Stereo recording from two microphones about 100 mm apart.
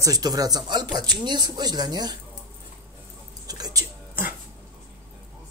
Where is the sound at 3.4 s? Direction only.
40° right (ahead or behind).